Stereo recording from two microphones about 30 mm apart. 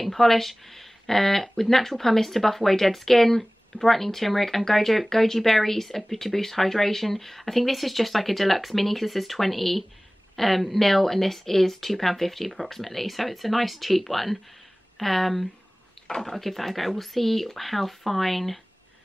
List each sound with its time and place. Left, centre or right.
0.0 s speech: centre